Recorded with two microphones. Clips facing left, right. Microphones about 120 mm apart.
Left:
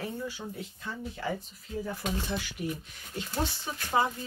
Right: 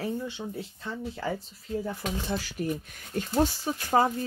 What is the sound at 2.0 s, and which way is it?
Speech, 35° right (ahead or behind).